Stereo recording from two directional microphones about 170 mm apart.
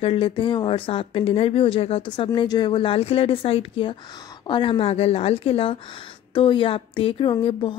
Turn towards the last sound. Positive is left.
turn(degrees=30)  # may be behind; listen again after turning